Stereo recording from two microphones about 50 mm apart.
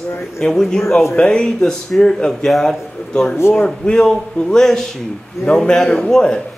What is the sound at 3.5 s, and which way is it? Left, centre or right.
Speech, centre.